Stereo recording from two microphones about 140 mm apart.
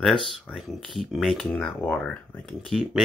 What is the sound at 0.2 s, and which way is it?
Speech, centre (ahead or behind).